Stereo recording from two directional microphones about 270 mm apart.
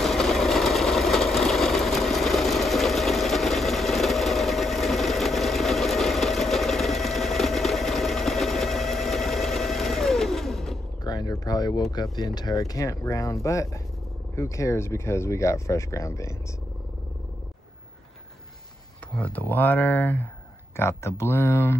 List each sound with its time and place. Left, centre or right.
0.0 s vehicle: centre
11.1 s speech: centre
19.1 s speech: centre